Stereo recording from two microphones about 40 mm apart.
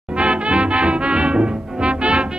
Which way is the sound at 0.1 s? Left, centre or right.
Right.